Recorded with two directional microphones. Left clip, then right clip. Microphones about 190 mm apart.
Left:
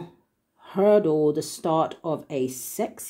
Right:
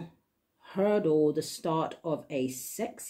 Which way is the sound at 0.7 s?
30° left (ahead or behind).